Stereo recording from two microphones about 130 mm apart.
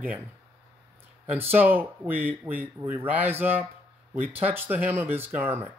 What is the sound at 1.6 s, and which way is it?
Speech, 15° right (ahead or behind).